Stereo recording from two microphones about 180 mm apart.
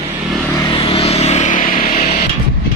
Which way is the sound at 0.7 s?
30° left (ahead or behind).